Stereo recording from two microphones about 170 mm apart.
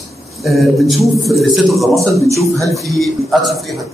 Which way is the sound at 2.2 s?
20° right (ahead or behind).